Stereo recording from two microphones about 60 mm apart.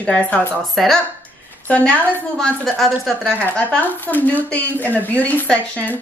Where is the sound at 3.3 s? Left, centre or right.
Left.